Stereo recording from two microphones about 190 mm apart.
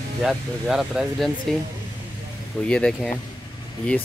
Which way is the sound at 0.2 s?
Centre (ahead or behind).